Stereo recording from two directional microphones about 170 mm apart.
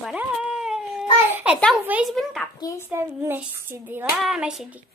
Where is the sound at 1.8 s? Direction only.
5° right (ahead or behind).